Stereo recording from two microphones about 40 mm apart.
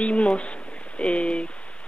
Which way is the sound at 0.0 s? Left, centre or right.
Left.